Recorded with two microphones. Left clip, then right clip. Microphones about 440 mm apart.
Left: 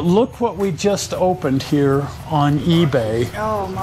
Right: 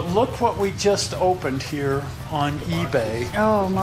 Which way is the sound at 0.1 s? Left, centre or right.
Left.